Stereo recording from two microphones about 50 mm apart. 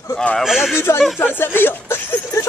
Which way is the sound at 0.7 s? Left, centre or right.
Left.